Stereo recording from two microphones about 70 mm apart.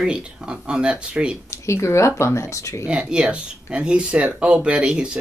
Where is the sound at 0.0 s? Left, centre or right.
Centre.